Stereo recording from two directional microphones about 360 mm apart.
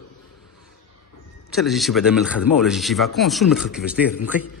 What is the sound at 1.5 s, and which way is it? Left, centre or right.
Speech, centre.